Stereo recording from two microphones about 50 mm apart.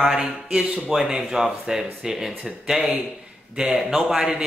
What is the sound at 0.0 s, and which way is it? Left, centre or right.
Speech, centre.